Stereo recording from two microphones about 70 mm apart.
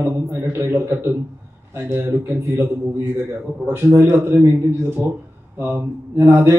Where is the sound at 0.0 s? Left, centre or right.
Right.